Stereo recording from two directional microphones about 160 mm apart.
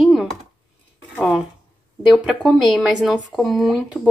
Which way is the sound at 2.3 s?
Centre (ahead or behind).